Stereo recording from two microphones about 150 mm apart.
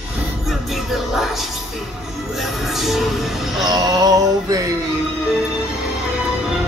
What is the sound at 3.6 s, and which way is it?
Music, 25° right (ahead or behind).